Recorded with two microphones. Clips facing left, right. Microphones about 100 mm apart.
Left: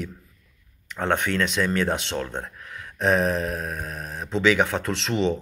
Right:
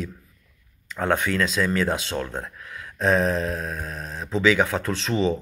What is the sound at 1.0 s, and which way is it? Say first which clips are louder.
Speech: right 1 dB; 25° left (ahead or behind).